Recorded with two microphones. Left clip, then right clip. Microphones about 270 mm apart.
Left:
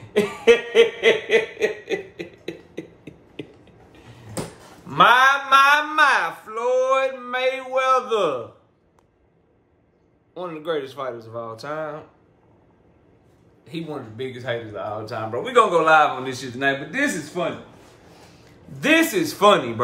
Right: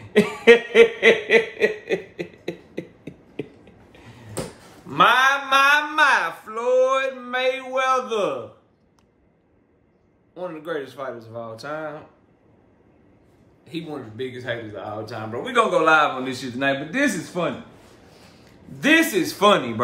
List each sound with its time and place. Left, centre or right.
0.1 s snicker: right
4.8 s speech: centre
10.3 s speech: centre
13.7 s a man's voice: centre